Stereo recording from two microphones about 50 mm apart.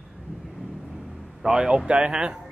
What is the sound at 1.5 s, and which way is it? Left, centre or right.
Speech, centre.